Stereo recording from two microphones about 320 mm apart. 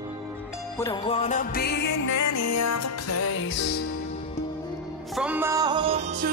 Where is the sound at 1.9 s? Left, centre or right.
Left.